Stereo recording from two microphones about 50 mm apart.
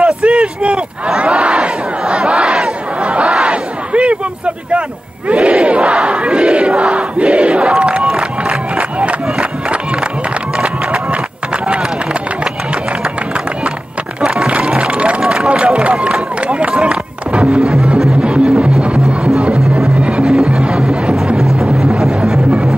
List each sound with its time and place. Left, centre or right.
0.0 s crowd: right
3.3 s battle cry: right
5.3 s crowd: right
10.5 s run: right
14.2 s music: centre
15.4 s run: right
18.2 s music: right